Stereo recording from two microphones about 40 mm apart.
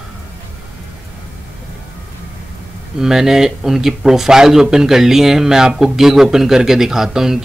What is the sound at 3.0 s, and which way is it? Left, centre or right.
Speech, centre.